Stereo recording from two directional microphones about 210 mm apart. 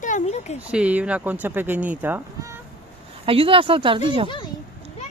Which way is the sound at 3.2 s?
25° right (ahead or behind).